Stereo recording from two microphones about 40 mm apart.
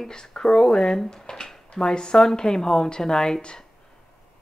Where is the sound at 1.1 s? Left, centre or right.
Centre.